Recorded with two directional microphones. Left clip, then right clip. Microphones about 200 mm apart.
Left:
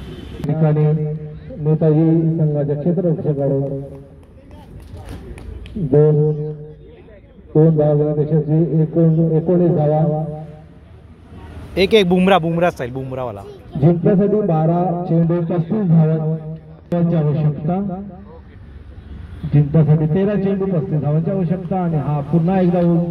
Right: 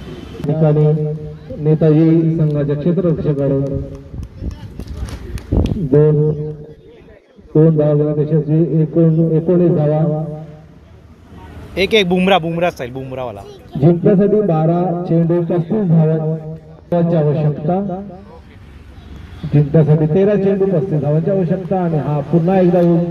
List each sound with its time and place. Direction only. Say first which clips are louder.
0.5 s speech: right 4 dB; 45° right (ahead or behind)
1.6 s a man's voice: right 3 dB; 55° right (ahead or behind)
5.3 s speech: right 13 dB; 55° right (ahead or behind)
7.5 s a man's voice: right 2 dB; 55° right (ahead or behind)
11.7 s speech: even; 20° left (ahead or behind)
12.1 s speech: right 1 dB; 5° left (ahead or behind)
13.7 s speech: right 3 dB; 50° right (ahead or behind)
15.4 s a man's voice: right 3 dB; 35° right (ahead or behind)
19.5 s a man's voice: right 4 dB; 40° right (ahead or behind)